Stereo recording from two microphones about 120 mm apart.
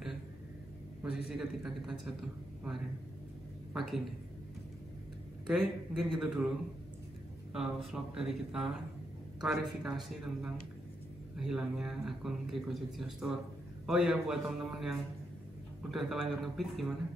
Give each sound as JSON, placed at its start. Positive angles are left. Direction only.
{"t": 1.0, "sound": "a man's voice", "side_deg": -5}
{"t": 3.7, "sound": "a man's voice", "side_deg": 0}
{"t": 5.5, "sound": "a man's voice", "side_deg": 5}
{"t": 7.5, "sound": "a man's voice", "side_deg": -5}